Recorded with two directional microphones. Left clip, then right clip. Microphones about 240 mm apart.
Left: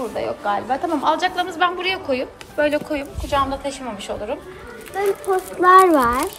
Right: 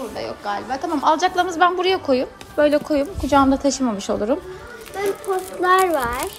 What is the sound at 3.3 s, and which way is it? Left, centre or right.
Speech, right.